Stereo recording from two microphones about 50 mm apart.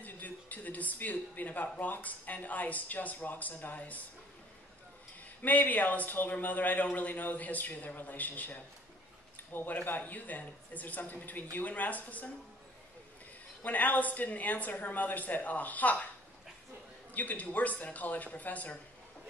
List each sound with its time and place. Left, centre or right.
0.0 s speech: left
5.4 s a man's voice: left
13.6 s speech: left
17.1 s speech: left